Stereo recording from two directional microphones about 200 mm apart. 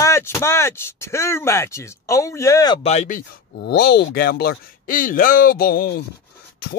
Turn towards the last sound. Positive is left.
turn(degrees=50)  # may be behind; listen again after turning